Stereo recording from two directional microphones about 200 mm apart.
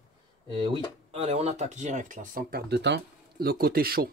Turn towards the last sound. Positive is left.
turn(degrees=-50)  # may be behind; listen again after turning